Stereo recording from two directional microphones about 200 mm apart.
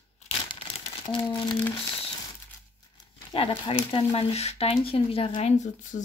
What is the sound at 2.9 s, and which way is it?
Speech, 25° left (ahead or behind).